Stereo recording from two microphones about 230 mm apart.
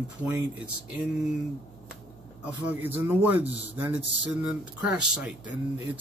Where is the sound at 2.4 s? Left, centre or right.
Centre.